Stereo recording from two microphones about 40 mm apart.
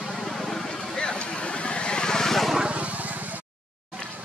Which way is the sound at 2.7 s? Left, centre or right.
Right.